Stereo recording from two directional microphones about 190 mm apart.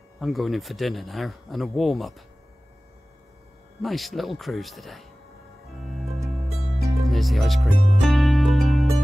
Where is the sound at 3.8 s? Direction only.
Centre (ahead or behind).